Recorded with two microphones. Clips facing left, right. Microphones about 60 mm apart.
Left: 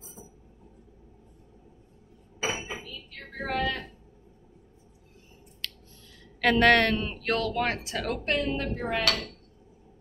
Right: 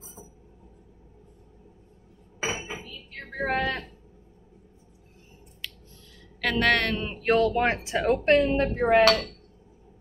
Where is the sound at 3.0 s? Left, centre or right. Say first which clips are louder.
Right 6 dB; right.